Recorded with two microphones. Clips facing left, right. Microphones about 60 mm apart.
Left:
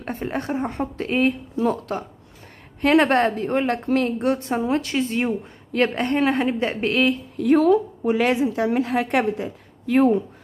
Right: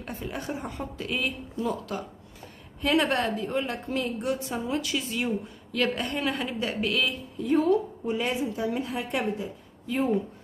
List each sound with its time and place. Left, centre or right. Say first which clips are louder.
0.0 s a woman's voice: left 7 dB; left
7.3 s a woman's voice: left 6 dB; left